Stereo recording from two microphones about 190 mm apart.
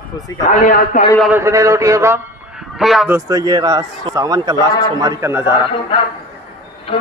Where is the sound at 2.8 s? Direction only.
Centre (ahead or behind).